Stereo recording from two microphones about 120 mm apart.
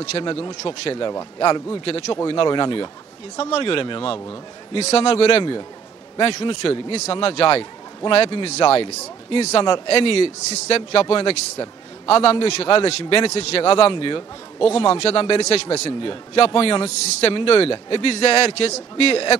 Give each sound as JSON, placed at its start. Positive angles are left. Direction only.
{"t": 0.2, "sound": "a man's voice", "side_deg": 45}
{"t": 3.3, "sound": "a man's voice", "side_deg": 55}
{"t": 4.7, "sound": "a man's voice", "side_deg": 60}
{"t": 5.3, "sound": "a man's voice", "side_deg": 40}
{"t": 6.4, "sound": "a man's voice", "side_deg": 55}